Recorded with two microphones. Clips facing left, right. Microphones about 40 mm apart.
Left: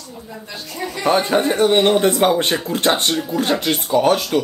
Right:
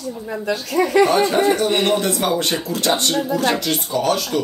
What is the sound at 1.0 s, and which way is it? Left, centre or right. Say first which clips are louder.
Speech: left 1 dB; left.